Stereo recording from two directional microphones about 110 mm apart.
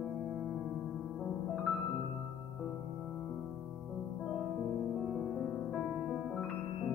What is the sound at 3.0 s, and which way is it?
Music, 5° left (ahead or behind).